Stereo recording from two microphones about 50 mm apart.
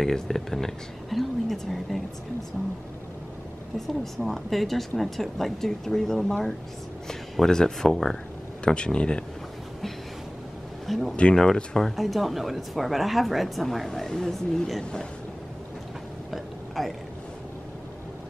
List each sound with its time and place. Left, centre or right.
0.0 s a woman's voice: centre
3.7 s a woman's voice: centre
8.6 s speech: centre
10.9 s a woman's voice: centre
11.3 s speech: centre
12.0 s a woman's voice: centre
16.3 s a sound: centre